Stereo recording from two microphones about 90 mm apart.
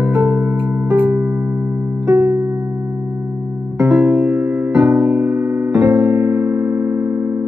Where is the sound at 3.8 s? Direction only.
15° right (ahead or behind).